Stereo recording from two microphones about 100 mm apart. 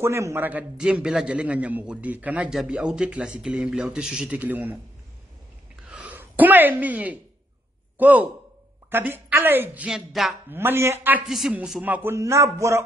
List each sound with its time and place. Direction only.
0.0 s speech: 25° right (ahead or behind)
0.7 s a man's voice: 10° right (ahead or behind)
5.9 s a sound: 15° right (ahead or behind)
8.0 s a man's voice: 15° right (ahead or behind)
9.8 s a sound: 5° right (ahead or behind)
10.5 s speech: 20° right (ahead or behind)
11.2 s a sound: 5° right (ahead or behind)
11.5 s a man's voice: 5° right (ahead or behind)
11.8 s speech: 20° right (ahead or behind)